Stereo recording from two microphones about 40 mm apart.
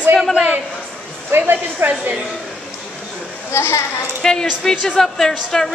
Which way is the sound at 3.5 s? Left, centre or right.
Left.